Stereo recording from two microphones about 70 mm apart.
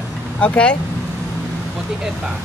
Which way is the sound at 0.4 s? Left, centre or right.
Centre.